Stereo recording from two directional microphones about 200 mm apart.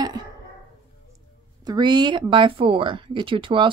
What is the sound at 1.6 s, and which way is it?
Speech, 20° right (ahead or behind).